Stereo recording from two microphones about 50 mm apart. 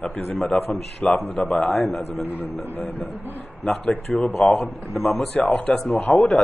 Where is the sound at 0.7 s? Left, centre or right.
Left.